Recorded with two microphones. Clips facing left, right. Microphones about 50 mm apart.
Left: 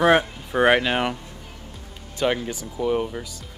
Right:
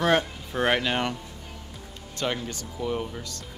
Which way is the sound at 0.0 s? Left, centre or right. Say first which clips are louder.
Left 5 dB; centre.